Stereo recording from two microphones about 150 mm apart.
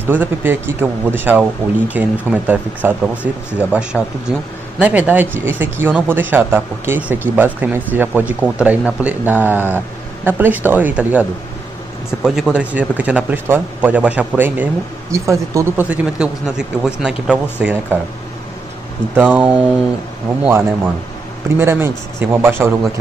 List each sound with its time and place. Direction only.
0.0 s a man's voice: 15° right (ahead or behind)
19.1 s a man's voice: 10° right (ahead or behind)